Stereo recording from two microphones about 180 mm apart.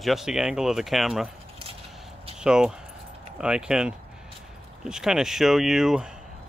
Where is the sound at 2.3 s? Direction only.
5° right (ahead or behind).